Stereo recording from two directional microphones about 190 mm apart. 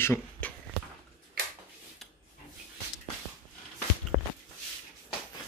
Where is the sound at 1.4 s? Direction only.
50° right (ahead or behind).